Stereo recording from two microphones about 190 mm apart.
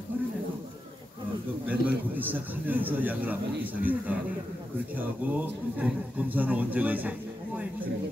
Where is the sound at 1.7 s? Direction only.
10° right (ahead or behind).